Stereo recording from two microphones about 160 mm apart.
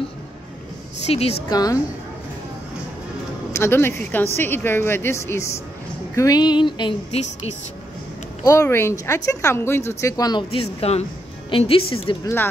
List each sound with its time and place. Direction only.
1.0 s a woman's voice: 40° left (ahead or behind)
1.5 s music: 25° left (ahead or behind)
3.5 s a woman's voice: 15° left (ahead or behind)
6.1 s music: 25° left (ahead or behind)
8.5 s a woman's voice: 15° left (ahead or behind)
10.5 s a woman's voice: 35° left (ahead or behind)